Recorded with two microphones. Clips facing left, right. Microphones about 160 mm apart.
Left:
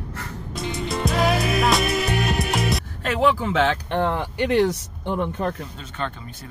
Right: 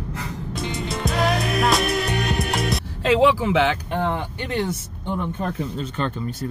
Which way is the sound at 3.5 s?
5° right (ahead or behind).